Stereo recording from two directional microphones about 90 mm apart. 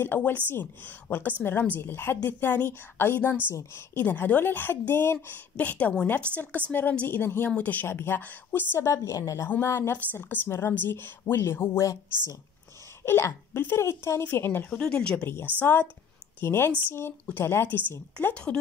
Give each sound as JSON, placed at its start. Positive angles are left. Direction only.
{"t": 0.0, "sound": "a woman's voice", "side_deg": 20}
{"t": 5.6, "sound": "a woman's voice", "side_deg": 15}
{"t": 13.0, "sound": "a woman's voice", "side_deg": 30}
{"t": 14.7, "sound": "a woman's voice", "side_deg": 10}
{"t": 15.2, "sound": "a woman's voice", "side_deg": 25}